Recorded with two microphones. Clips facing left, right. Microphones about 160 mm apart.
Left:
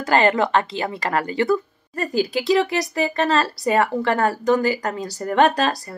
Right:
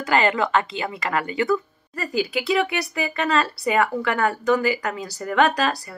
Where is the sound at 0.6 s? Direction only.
35° left (ahead or behind).